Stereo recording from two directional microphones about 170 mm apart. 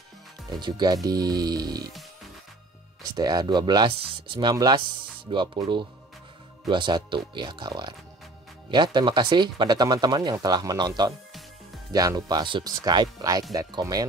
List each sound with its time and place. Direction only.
0.5 s speech: 25° right (ahead or behind)
3.0 s speech: 20° right (ahead or behind)